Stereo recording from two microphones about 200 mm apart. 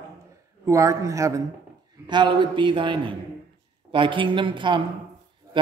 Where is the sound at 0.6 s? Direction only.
15° right (ahead or behind).